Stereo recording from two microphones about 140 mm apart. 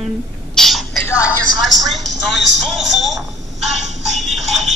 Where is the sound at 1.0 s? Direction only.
15° left (ahead or behind).